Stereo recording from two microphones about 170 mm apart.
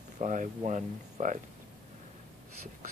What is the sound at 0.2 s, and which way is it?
Speech, 45° right (ahead or behind).